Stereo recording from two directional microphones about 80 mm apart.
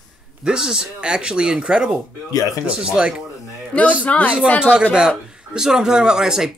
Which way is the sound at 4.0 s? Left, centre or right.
Centre.